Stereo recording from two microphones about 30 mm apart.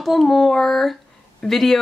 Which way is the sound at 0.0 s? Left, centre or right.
Centre.